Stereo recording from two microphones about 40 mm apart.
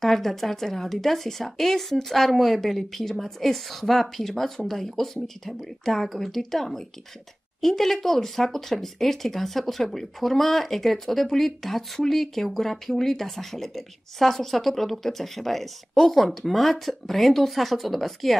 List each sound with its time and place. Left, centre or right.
0.0 s a woman's voice: centre